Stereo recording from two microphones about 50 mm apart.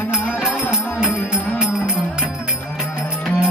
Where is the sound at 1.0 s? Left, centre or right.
Centre.